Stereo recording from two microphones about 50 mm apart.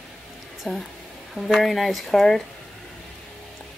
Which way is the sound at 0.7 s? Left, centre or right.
Centre.